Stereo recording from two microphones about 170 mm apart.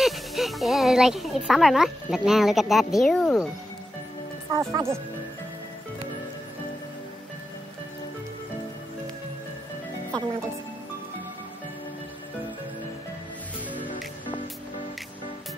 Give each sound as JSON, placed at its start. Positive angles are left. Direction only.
{"t": 0.0, "sound": "speech", "side_deg": 0}
{"t": 4.5, "sound": "speech", "side_deg": -20}